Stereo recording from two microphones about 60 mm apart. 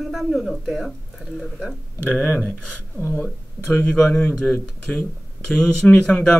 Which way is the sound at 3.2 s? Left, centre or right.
Left.